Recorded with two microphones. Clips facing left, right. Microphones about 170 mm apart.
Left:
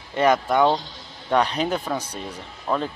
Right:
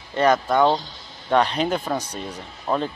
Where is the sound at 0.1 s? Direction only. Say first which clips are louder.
Even; 15° left (ahead or behind).